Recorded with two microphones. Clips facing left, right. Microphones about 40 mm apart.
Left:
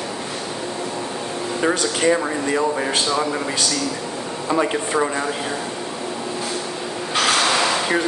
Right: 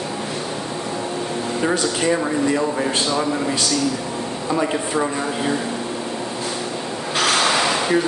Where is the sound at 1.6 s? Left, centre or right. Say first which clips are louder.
Left 2 dB; centre.